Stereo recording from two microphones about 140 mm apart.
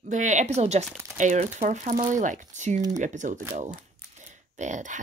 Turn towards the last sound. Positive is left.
turn(degrees=-60)  # may be behind; listen again after turning